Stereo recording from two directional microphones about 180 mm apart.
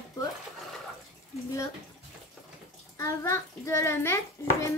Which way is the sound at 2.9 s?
15° left (ahead or behind).